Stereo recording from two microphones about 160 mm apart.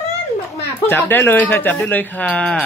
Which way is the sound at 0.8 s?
15° left (ahead or behind).